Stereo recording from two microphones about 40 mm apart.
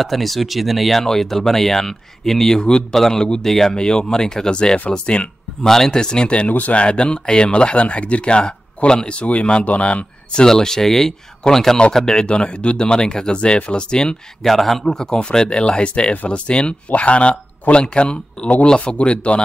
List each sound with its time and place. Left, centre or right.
0.0 s speech: centre; by 5.3 s left
5.6 s speech: centre; by 6.5 s left
6.5 s speech: left
6.8 s a man's voice: left
10.4 s speech: centre
14.4 s speech: centre
14.9 s speech: centre